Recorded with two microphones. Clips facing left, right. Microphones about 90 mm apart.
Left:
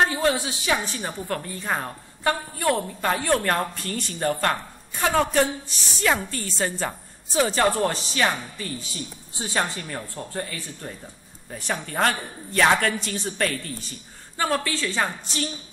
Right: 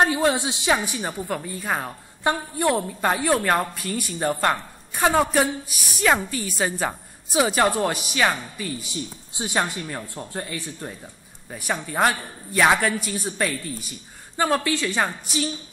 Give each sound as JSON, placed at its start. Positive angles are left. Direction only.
{"t": 0.1, "sound": "a woman's voice", "side_deg": -20}
{"t": 2.2, "sound": "a woman's voice", "side_deg": -20}
{"t": 11.5, "sound": "a woman's voice", "side_deg": -10}